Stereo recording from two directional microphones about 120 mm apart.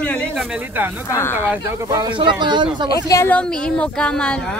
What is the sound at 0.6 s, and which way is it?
Speech, 15° right (ahead or behind).